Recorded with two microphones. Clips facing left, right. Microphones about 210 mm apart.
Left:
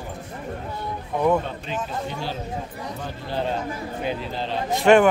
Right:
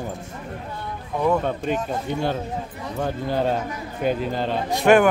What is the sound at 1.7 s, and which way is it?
Speech, 50° right (ahead or behind).